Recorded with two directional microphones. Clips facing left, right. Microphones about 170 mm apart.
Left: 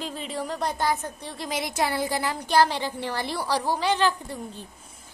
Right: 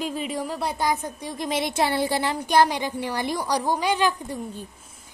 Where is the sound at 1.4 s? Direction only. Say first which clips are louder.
Right 3 dB; 25° right (ahead or behind).